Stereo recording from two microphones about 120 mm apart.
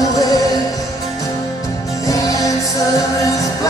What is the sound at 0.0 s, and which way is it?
Music, 25° left (ahead or behind).